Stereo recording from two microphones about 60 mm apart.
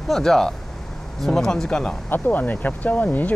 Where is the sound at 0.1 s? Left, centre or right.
Centre.